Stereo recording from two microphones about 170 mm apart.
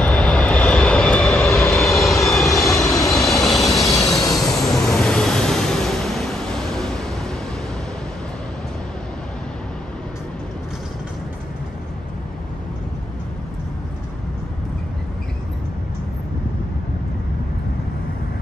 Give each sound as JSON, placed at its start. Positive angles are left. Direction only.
{"t": 0.0, "sound": "vehicle", "side_deg": 5}
{"t": 3.8, "sound": "train", "side_deg": 20}
{"t": 4.2, "sound": "a sound", "side_deg": 0}